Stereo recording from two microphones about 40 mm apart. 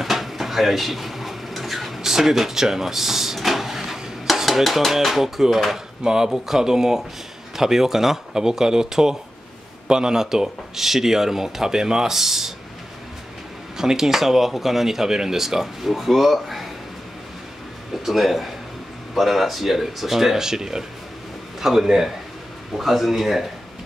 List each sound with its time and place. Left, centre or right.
0.0 s a sound: centre
6.0 s speech: centre
13.7 s speech: centre
18.0 s speech: centre